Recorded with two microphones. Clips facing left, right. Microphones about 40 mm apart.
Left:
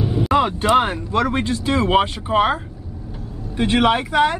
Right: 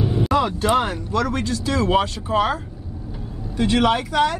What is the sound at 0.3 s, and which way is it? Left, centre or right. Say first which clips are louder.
Speech: left 4 dB; left.